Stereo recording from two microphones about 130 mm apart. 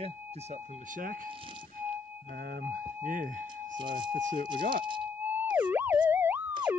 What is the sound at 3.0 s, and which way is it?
Speech, 90° right.